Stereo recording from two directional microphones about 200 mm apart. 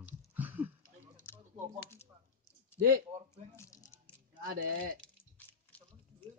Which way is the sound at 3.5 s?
15° left (ahead or behind).